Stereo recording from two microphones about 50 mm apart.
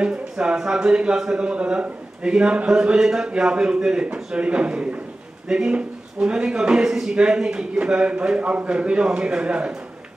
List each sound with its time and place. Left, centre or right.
0.0 s speech: centre